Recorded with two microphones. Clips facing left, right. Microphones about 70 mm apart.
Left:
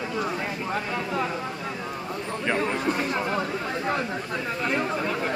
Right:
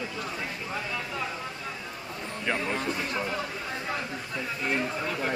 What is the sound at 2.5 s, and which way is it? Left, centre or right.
Speech, centre.